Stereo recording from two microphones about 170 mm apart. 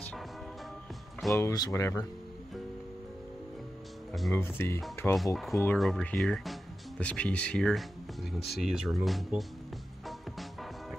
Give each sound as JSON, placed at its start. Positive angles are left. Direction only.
{"t": 1.3, "sound": "speech", "side_deg": 20}
{"t": 4.1, "sound": "speech", "side_deg": 0}
{"t": 4.4, "sound": "speech", "side_deg": 15}
{"t": 5.1, "sound": "speech", "side_deg": 0}